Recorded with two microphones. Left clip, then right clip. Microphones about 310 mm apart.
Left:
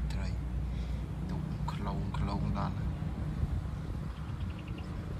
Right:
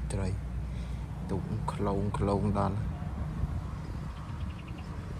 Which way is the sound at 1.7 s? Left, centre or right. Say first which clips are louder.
Right 8 dB; centre.